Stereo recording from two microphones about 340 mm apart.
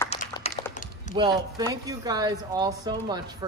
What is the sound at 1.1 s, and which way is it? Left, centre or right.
Speech, centre.